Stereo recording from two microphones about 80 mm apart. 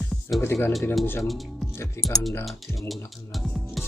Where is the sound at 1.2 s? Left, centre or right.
Centre.